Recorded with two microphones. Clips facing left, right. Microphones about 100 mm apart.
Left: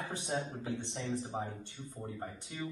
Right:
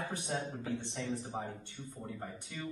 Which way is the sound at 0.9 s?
30° left (ahead or behind).